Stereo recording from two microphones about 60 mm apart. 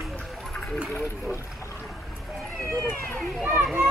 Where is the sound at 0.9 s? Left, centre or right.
Left.